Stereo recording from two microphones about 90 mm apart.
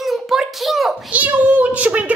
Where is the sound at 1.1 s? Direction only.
15° right (ahead or behind).